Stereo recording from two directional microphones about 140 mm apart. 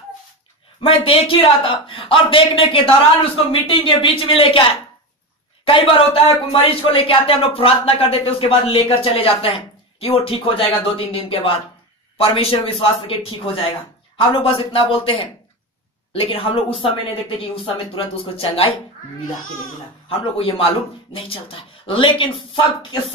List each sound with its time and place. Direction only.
0.7 s a man's voice: 40° left (ahead or behind)
20.1 s a man's voice: 40° left (ahead or behind)